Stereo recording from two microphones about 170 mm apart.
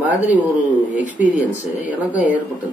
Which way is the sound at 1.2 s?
45° left (ahead or behind).